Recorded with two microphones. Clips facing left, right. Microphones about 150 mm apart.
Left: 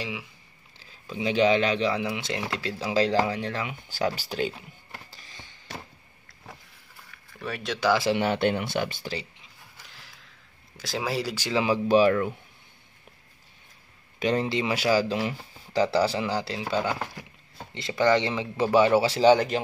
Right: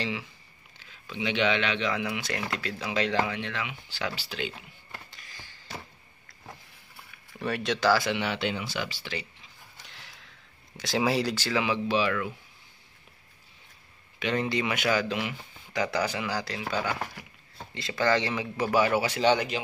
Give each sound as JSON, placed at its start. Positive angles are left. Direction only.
{"t": 0.0, "sound": "speech", "side_deg": 10}
{"t": 0.7, "sound": "speech", "side_deg": 35}
{"t": 5.1, "sound": "a sound", "side_deg": 25}
{"t": 7.3, "sound": "speech", "side_deg": 0}
{"t": 7.9, "sound": "speech", "side_deg": 25}
{"t": 8.2, "sound": "speech", "side_deg": 50}
{"t": 9.8, "sound": "a sound", "side_deg": 0}
{"t": 10.8, "sound": "speech", "side_deg": 0}
{"t": 11.5, "sound": "speech", "side_deg": 40}
{"t": 14.2, "sound": "speech", "side_deg": 30}